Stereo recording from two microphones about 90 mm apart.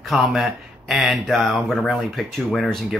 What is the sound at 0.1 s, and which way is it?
Speech, centre (ahead or behind).